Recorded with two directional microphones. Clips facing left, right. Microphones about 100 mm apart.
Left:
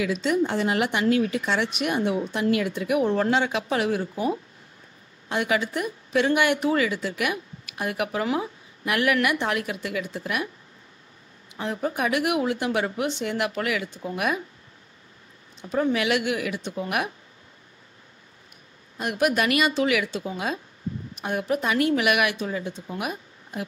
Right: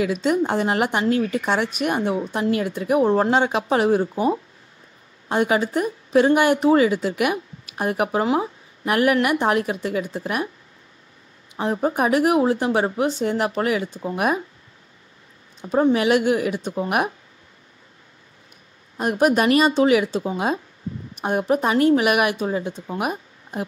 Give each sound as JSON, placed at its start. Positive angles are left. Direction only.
{"t": 0.0, "sound": "speech", "side_deg": -45}
{"t": 5.3, "sound": "speech", "side_deg": -40}
{"t": 11.5, "sound": "speech", "side_deg": -35}
{"t": 15.6, "sound": "speech", "side_deg": -35}
{"t": 18.9, "sound": "speech", "side_deg": -40}